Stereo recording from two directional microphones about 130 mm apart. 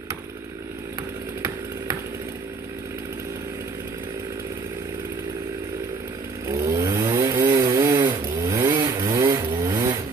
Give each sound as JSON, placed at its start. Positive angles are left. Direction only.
{"t": 6.6, "sound": "chainsaw", "side_deg": -30}
{"t": 7.6, "sound": "chainsaw", "side_deg": -30}
{"t": 8.0, "sound": "vehicle", "side_deg": -25}